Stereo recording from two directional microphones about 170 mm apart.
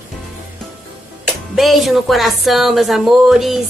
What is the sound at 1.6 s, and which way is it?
Speech, centre (ahead or behind).